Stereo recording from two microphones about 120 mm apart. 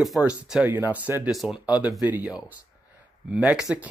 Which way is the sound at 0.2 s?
10° right (ahead or behind).